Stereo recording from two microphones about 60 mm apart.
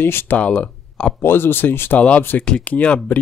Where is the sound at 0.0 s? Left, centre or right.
Left.